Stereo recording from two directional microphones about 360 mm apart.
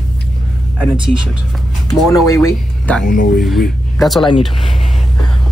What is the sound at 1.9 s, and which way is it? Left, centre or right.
Speech, centre.